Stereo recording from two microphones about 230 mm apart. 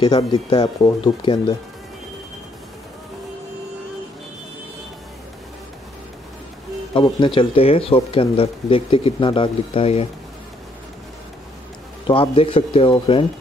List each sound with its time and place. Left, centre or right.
0.5 s speech: left
6.9 s speech: left
12.1 s speech: left